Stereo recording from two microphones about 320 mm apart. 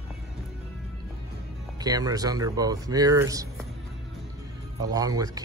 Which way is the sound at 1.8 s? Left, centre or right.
Centre.